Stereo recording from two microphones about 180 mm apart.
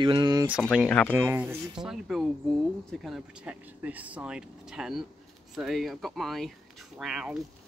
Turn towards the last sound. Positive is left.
turn(degrees=-5)  # may be behind; listen again after turning